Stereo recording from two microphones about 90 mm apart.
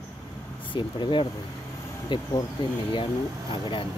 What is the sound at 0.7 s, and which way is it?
Speech, 60° left (ahead or behind).